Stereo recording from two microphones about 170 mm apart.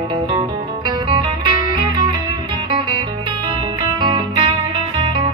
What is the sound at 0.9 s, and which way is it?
Music, 25° right (ahead or behind).